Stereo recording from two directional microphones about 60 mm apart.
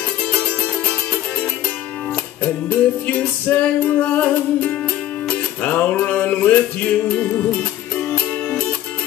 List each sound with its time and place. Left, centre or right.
0.3 s music: left
2.4 s music: left